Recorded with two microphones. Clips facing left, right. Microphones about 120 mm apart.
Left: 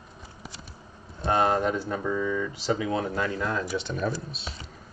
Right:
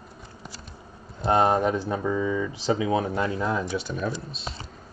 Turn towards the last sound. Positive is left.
turn(degrees=0)  # may be behind; listen again after turning